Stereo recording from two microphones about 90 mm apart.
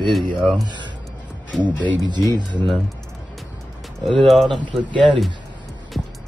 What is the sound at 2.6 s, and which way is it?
Music, centre (ahead or behind).